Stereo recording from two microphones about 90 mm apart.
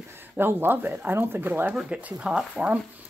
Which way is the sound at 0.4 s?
25° right (ahead or behind).